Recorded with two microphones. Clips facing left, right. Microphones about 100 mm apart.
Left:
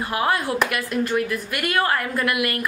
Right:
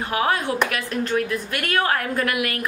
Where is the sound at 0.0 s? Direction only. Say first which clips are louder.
Even; centre (ahead or behind).